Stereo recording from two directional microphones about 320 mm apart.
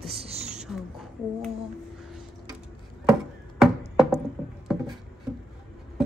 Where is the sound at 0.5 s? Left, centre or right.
Centre.